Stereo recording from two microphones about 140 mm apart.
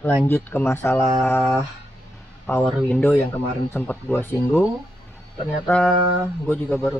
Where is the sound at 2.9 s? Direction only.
15° left (ahead or behind).